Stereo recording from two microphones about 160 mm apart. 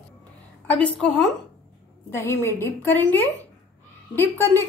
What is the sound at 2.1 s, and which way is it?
A woman's voice, 15° left (ahead or behind).